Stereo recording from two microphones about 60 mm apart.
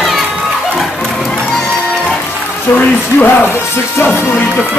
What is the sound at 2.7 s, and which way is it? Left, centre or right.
Speech, left.